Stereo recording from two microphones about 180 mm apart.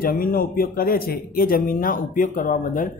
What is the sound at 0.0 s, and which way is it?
Speech, 50° left (ahead or behind).